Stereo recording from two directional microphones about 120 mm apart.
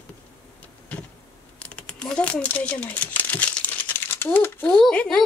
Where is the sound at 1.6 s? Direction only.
10° left (ahead or behind).